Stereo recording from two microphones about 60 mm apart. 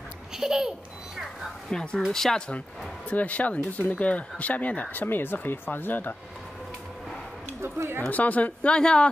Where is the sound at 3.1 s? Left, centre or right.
Left.